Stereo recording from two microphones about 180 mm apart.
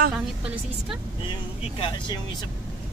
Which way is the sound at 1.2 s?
30° left (ahead or behind).